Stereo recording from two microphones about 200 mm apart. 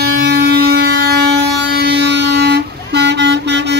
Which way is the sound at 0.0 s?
55° right (ahead or behind).